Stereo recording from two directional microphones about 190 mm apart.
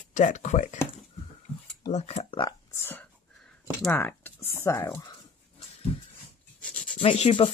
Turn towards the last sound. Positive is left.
turn(degrees=30)  # may be behind; listen again after turning